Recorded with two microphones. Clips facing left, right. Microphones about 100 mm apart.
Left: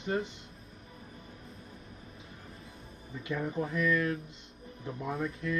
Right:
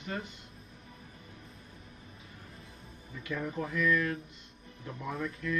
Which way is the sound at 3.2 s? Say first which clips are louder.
Left 2 dB; 25° left (ahead or behind).